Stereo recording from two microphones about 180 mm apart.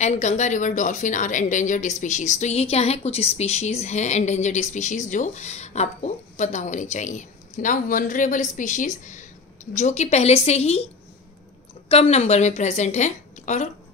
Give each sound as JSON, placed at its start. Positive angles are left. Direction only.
{"t": 0.0, "sound": "a woman's voice", "side_deg": 40}
{"t": 11.9, "sound": "a woman's voice", "side_deg": 35}